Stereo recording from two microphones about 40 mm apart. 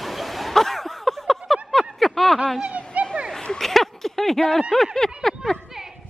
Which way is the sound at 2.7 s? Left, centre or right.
Right.